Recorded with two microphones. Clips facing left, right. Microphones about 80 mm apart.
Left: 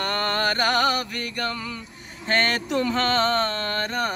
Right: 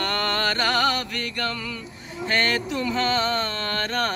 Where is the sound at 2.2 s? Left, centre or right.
Left.